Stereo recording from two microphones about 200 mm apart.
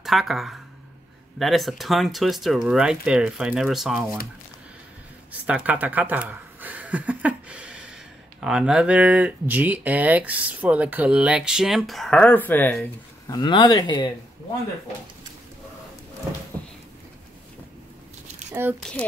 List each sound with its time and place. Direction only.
0.0 s speech: centre (ahead or behind)
5.3 s a sound: 5° right (ahead or behind)
8.4 s speech: 5° right (ahead or behind)
13.3 s speech: 20° left (ahead or behind)
18.5 s speech: 10° right (ahead or behind)
18.8 s speech: 5° left (ahead or behind)